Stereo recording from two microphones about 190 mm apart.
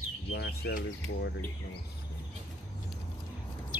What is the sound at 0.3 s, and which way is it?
Speech, 60° left (ahead or behind).